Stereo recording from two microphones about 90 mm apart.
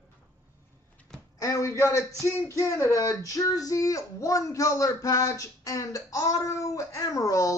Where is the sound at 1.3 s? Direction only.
35° left (ahead or behind).